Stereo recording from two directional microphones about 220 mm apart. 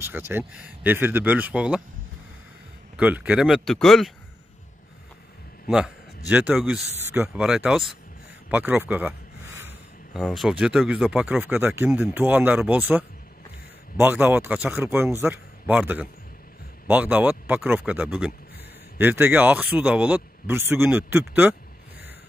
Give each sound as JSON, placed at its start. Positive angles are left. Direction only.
{"t": 0.0, "sound": "speech", "side_deg": -10}
{"t": 3.0, "sound": "speech", "side_deg": -5}
{"t": 5.7, "sound": "a man's voice", "side_deg": -5}
{"t": 8.5, "sound": "a sound", "side_deg": -5}
{"t": 10.1, "sound": "speech", "side_deg": 0}